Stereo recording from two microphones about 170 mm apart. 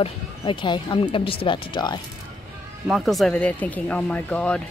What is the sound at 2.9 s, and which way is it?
Speech, centre (ahead or behind).